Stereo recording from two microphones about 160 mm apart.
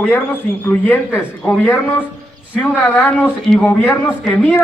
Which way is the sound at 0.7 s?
10° left (ahead or behind).